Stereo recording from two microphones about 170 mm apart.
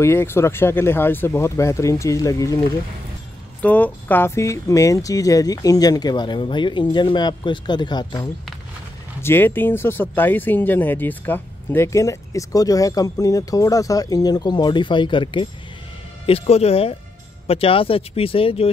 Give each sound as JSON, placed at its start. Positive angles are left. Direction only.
{"t": 0.0, "sound": "speech", "side_deg": 15}
{"t": 3.6, "sound": "speech", "side_deg": 10}
{"t": 9.2, "sound": "speech", "side_deg": 15}